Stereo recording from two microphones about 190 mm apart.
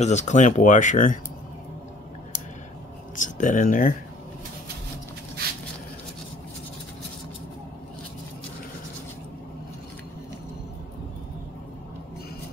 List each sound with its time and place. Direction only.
0.0 s speech: 35° left (ahead or behind)
3.2 s speech: 40° left (ahead or behind)